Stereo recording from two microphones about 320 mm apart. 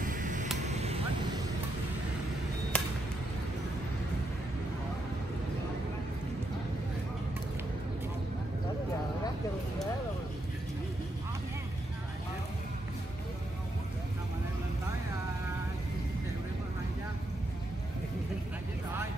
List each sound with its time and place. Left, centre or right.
0.0 s a sound: right
0.7 s vehicle: centre
2.7 s chop: centre